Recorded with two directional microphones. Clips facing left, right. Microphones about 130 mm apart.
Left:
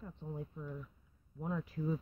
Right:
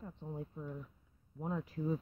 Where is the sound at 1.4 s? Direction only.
30° right (ahead or behind).